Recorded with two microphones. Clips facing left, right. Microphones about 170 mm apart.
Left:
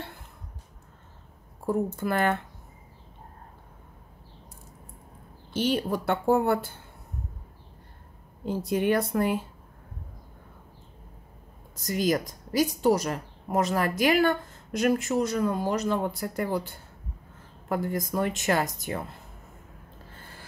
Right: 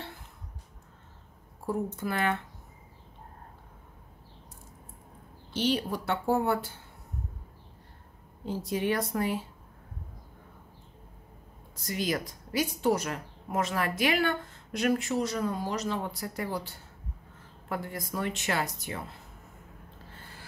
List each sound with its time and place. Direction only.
2.0 s a woman's voice: 50° left (ahead or behind)
5.5 s a woman's voice: 50° left (ahead or behind)
8.5 s a woman's voice: 50° left (ahead or behind)
11.7 s a woman's voice: 45° left (ahead or behind)